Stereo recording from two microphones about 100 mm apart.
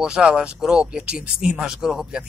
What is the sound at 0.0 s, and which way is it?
Speech, 10° right (ahead or behind).